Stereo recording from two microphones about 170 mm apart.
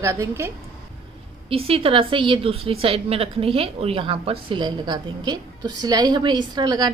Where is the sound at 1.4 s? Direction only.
35° right (ahead or behind).